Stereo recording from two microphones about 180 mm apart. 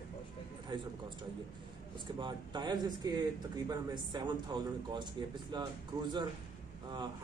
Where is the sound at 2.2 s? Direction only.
25° right (ahead or behind).